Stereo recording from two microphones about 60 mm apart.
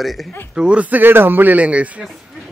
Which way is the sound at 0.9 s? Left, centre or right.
Right.